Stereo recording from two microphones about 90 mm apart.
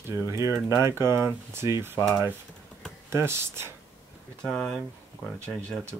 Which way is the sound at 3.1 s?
30° right (ahead or behind).